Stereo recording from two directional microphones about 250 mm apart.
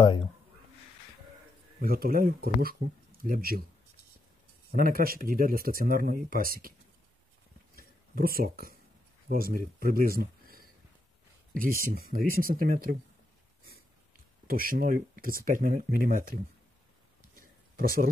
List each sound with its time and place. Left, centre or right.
1.8 s speech: right
4.7 s speech: right
7.7 s a sound: right
9.3 s speech: right
14.5 s speech: right
17.4 s a sound: right